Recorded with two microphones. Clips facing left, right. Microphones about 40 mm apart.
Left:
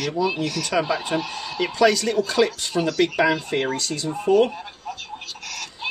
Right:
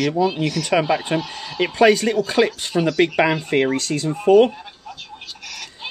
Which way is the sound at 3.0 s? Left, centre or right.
Right.